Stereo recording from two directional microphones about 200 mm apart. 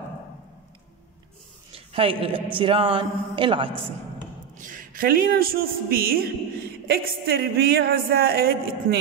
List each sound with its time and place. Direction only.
1.9 s a man's voice: 25° right (ahead or behind)
4.6 s speech: 40° right (ahead or behind)